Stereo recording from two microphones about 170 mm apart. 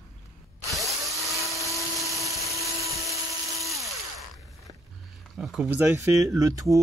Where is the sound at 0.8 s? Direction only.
Centre (ahead or behind).